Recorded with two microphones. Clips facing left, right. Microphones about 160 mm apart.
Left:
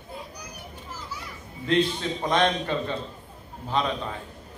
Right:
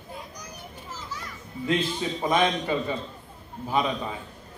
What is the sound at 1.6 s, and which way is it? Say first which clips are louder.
A man's voice: left 2 dB; 5° right (ahead or behind).